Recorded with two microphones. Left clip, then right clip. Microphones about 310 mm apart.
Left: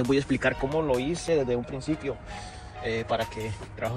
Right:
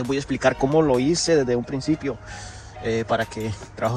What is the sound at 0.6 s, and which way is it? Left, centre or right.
Speech, right.